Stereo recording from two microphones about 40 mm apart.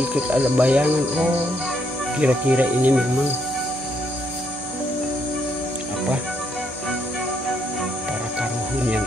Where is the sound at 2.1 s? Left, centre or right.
Right.